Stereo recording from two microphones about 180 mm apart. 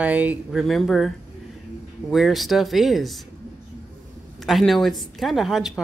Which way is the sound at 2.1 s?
Centre (ahead or behind).